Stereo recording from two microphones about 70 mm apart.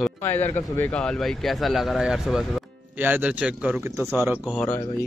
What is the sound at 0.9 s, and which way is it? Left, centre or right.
A man's voice, centre.